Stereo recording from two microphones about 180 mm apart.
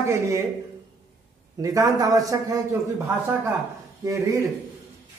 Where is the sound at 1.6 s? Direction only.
20° right (ahead or behind).